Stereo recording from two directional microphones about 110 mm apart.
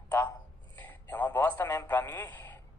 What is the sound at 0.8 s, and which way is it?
A man's voice, 15° left (ahead or behind).